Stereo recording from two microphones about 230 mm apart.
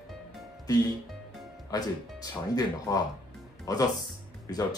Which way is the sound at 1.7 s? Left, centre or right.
Centre.